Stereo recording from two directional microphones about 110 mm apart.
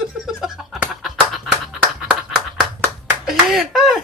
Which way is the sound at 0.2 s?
5° right (ahead or behind).